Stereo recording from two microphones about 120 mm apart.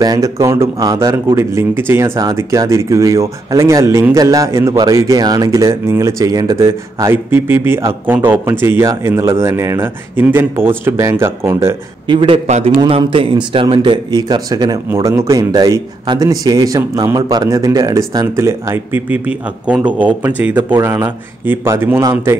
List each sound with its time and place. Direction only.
0.0 s speech: 30° right (ahead or behind)
2.1 s speech: 30° right (ahead or behind)
12.1 s speech: 45° right (ahead or behind)
12.4 s a man's voice: 70° right (ahead or behind)
12.8 s a man's voice: 50° right (ahead or behind); by 22.4 s 20° right (ahead or behind)